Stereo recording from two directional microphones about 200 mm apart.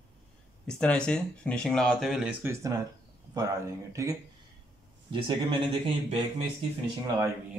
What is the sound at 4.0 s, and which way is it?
Speech, 15° right (ahead or behind).